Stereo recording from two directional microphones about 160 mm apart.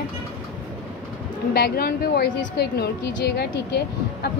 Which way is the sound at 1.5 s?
75° left (ahead or behind).